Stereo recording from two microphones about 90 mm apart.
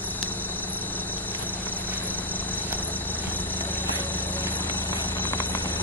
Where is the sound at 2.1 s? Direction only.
20° left (ahead or behind).